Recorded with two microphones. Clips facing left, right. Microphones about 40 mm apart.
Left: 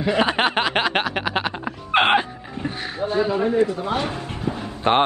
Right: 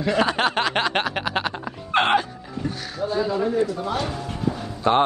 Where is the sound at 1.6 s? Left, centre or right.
Left.